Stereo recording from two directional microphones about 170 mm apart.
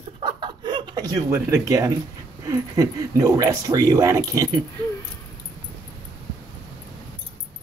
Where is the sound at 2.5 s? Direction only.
20° right (ahead or behind).